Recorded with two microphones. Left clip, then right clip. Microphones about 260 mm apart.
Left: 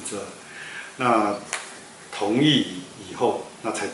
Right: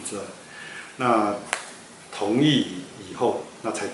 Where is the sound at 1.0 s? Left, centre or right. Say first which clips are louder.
Left 1 dB; centre.